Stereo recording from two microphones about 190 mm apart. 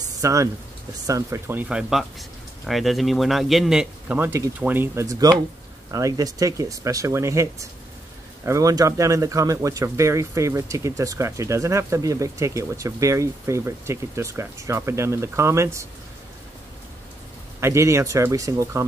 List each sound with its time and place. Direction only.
0.0 s a sound: 15° right (ahead or behind)
1.0 s speech: 15° right (ahead or behind)
17.6 s speech: 15° right (ahead or behind)